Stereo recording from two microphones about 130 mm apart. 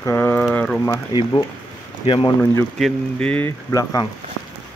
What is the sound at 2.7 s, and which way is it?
Speech, 5° left (ahead or behind).